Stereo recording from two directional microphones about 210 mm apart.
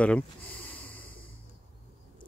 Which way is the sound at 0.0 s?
5° left (ahead or behind).